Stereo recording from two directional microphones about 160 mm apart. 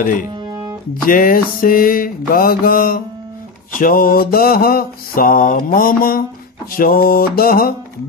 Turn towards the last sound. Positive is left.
turn(degrees=65)  # may be behind; listen again after turning